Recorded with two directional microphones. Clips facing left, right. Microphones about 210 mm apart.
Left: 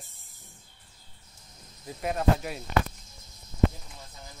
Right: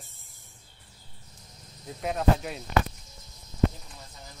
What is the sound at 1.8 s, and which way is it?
Speech, centre (ahead or behind).